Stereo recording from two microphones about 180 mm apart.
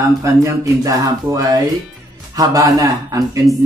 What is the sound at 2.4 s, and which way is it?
Mantra, 20° right (ahead or behind).